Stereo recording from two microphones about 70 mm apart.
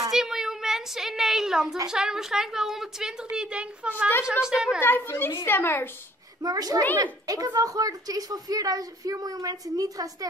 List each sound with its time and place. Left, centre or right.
0.1 s a sound: centre
1.9 s a woman's voice: centre
4.8 s a child's voice: left
6.4 s a woman's voice: right
7.0 s a woman's voice: right